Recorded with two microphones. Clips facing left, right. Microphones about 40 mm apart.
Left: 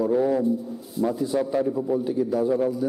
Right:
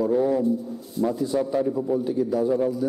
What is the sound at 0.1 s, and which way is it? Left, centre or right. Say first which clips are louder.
A man's voice: even; centre.